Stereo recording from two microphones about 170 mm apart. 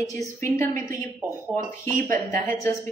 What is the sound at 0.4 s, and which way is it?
Speech, 15° left (ahead or behind).